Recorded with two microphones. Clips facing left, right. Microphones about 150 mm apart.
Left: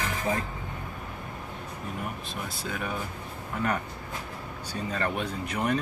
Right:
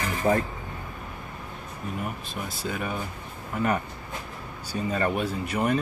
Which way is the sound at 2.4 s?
Centre (ahead or behind).